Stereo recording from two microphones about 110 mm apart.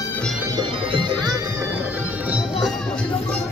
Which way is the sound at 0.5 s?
45° right (ahead or behind).